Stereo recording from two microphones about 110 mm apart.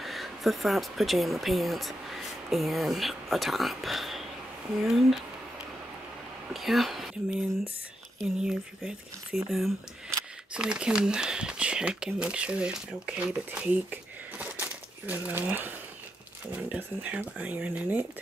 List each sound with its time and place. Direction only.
0.0 s speech: centre (ahead or behind)
6.5 s speech: centre (ahead or behind)
14.4 s crumpling: 15° right (ahead or behind)
16.5 s speech: 10° right (ahead or behind)